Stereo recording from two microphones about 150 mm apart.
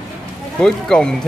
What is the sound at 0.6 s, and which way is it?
Speech, 5° left (ahead or behind).